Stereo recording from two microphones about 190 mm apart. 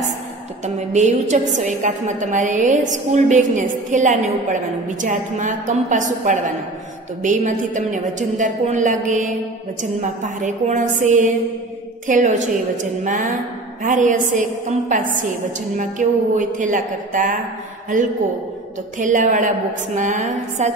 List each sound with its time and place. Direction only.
0.7 s a woman's voice: 40° right (ahead or behind)
10.4 s a woman's voice: 40° right (ahead or behind)
18.9 s a woman's voice: 45° right (ahead or behind)